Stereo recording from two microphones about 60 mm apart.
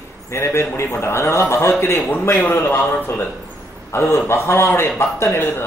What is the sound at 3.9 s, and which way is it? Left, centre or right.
A man's voice, left.